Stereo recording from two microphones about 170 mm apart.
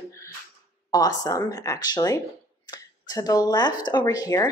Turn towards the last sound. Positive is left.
turn(degrees=20)  # may be behind; listen again after turning